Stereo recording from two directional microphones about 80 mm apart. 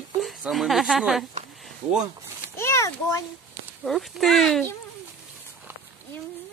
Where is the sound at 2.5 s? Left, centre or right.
Left.